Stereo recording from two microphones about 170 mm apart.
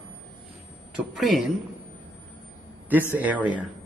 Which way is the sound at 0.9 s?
Centre (ahead or behind).